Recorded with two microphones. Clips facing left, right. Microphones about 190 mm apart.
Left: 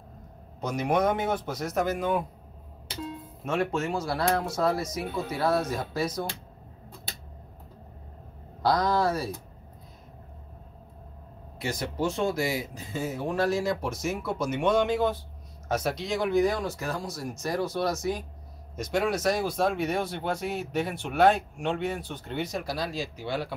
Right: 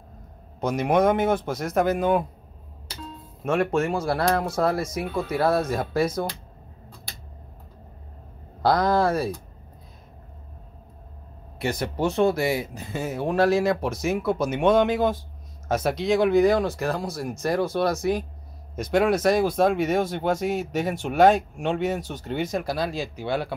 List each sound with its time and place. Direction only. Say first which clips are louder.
0.6 s a man's voice: right 5 dB; 85° right
1.5 s speech: right 5 dB; 50° right (ahead or behind)
3.4 s speech: right 5 dB; 55° right (ahead or behind)
8.6 s speech: right 4 dB; 55° right (ahead or behind)
11.6 s speech: right 4 dB; 60° right (ahead or behind); by 15.0 s 80° right
15.7 s speech: right 6 dB; 55° right (ahead or behind)